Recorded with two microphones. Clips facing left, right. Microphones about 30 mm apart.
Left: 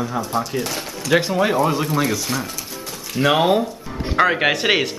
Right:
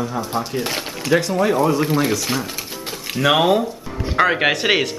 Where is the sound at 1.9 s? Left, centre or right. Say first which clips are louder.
Right 2 dB; centre.